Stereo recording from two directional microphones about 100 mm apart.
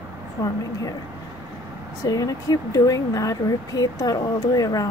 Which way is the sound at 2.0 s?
35° left (ahead or behind).